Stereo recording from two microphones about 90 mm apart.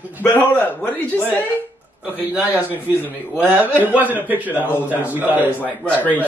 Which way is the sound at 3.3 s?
20° right (ahead or behind).